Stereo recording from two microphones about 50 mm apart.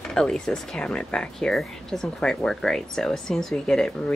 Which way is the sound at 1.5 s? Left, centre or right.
Centre.